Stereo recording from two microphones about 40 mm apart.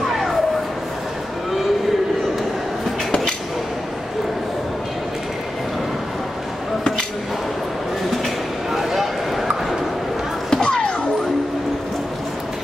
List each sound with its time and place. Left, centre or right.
0.0 s train: centre
8.7 s a sound: centre
10.5 s music: centre